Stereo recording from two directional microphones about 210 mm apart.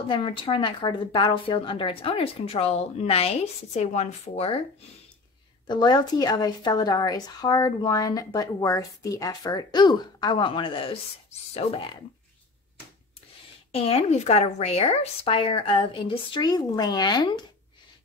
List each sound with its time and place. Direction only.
0.1 s speech: 25° left (ahead or behind)
5.7 s speech: 20° left (ahead or behind)
13.7 s speech: 30° left (ahead or behind)